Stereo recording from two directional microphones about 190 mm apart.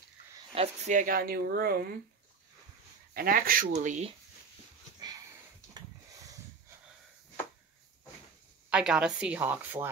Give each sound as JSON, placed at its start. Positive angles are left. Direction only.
{"t": 0.6, "sound": "speech", "side_deg": -40}
{"t": 3.2, "sound": "speech", "side_deg": -50}
{"t": 5.8, "sound": "a sound", "side_deg": -20}
{"t": 8.6, "sound": "speech", "side_deg": -5}